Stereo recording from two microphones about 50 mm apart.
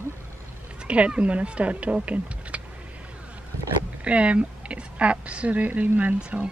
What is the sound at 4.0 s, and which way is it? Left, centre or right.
A woman's voice, right.